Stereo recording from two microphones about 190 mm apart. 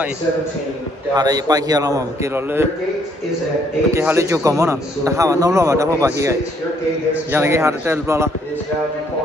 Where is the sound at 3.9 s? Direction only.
15° right (ahead or behind).